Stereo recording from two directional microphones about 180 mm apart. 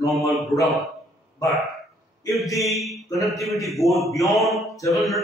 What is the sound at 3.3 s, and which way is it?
A man's voice, centre (ahead or behind).